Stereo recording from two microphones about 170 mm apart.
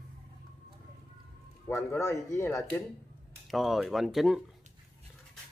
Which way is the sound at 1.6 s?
15° left (ahead or behind).